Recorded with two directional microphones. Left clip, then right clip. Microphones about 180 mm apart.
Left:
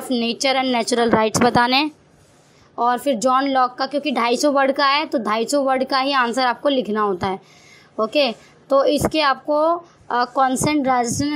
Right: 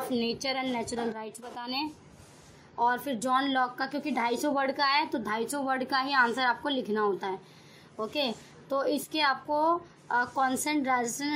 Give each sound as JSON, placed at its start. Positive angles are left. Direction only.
{"t": 0.1, "sound": "a woman's voice", "side_deg": 40}
{"t": 2.8, "sound": "a woman's voice", "side_deg": 35}